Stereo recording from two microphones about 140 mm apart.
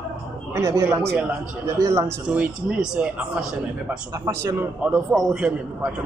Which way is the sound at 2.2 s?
10° right (ahead or behind).